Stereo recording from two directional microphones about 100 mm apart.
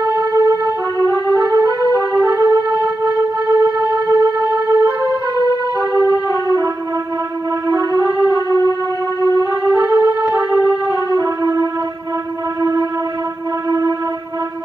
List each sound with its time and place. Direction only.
0.0 s music: 35° right (ahead or behind)
5.9 s music: 35° left (ahead or behind)
7.6 s music: 35° right (ahead or behind)
8.3 s music: 35° left (ahead or behind)
9.7 s music: 20° right (ahead or behind)
11.1 s music: 35° right (ahead or behind)
13.7 s music: 35° right (ahead or behind)